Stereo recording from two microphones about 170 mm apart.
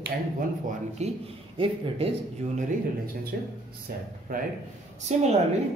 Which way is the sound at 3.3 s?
60° right (ahead or behind).